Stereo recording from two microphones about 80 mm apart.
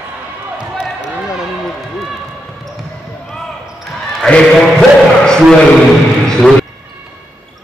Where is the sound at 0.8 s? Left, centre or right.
Centre.